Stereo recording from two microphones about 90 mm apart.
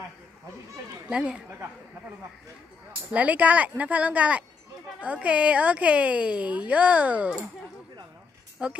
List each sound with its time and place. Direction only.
1.0 s speech: 10° right (ahead or behind)
3.1 s a woman's voice: 15° right (ahead or behind)
8.6 s a woman's voice: 10° right (ahead or behind)